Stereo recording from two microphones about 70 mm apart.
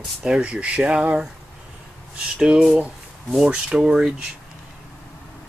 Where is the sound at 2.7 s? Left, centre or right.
Centre.